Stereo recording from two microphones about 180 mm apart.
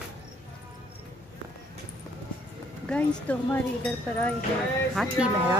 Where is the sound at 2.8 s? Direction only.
10° left (ahead or behind).